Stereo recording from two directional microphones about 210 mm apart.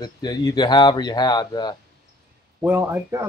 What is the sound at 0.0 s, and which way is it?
Speech, 20° left (ahead or behind).